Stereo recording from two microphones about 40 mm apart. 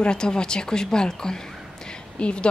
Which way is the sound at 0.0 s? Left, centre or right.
Left.